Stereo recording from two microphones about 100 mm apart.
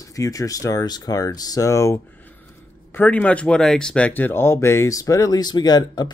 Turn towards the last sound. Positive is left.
turn(degrees=45)  # may be behind; listen again after turning